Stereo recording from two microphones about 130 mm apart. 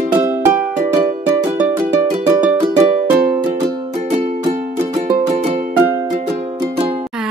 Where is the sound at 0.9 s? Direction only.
30° right (ahead or behind).